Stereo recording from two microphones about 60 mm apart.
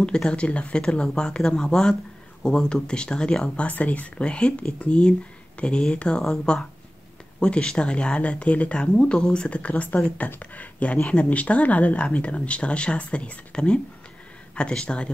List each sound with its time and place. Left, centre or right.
0.0 s speech: centre
3.5 s speech: left